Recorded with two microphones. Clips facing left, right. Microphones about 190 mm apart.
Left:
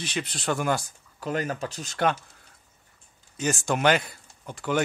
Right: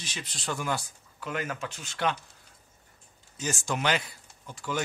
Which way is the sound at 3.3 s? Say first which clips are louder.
Left 5 dB; 60° left (ahead or behind).